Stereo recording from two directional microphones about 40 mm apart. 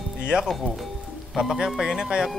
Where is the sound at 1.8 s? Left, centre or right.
Centre.